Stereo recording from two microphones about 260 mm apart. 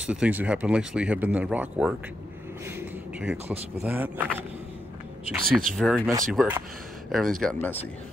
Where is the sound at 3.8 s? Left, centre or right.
Centre.